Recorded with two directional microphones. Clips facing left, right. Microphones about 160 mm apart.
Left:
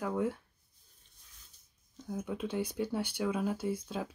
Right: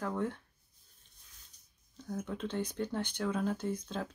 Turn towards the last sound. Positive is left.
turn(degrees=10)  # may be behind; listen again after turning